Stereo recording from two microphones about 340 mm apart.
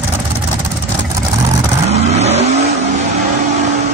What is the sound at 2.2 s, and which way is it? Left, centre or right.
Vehicle, centre.